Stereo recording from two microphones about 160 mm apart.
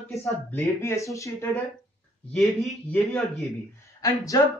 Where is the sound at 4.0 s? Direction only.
20° left (ahead or behind).